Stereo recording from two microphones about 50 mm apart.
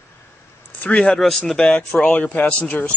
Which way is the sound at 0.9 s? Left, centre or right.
Centre.